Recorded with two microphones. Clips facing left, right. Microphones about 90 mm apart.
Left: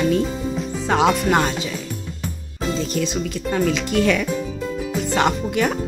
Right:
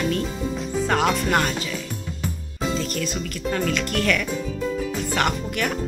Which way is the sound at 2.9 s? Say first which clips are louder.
Left 5 dB; 15° left (ahead or behind).